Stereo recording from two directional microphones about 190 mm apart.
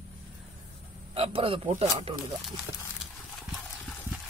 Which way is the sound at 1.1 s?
30° right (ahead or behind).